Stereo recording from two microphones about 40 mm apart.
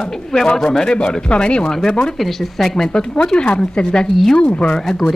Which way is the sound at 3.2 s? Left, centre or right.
Left.